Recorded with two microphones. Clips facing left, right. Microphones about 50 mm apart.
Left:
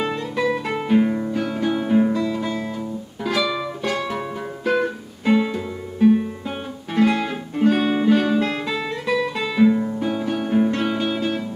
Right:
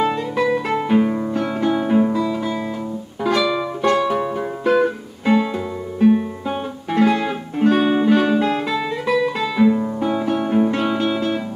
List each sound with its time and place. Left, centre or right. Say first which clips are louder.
0.1 s guitar: right 3 dB; centre
0.8 s music: left 2 dB; centre
2.0 s guitar: right 1 dB; centre
3.3 s music: right 4 dB; centre